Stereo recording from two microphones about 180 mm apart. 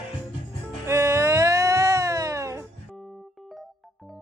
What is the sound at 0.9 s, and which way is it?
Music, 15° right (ahead or behind).